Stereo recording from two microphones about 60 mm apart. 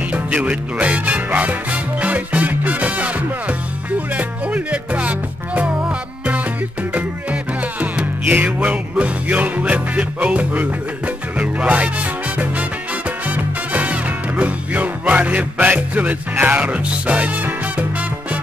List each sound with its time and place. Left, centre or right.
0.1 s music: right
7.8 s music: right
13.7 s music: right